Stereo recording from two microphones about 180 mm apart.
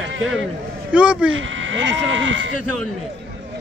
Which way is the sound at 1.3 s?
90° right.